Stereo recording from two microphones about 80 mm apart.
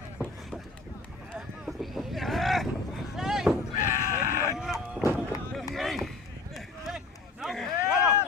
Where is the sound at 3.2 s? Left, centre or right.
Centre.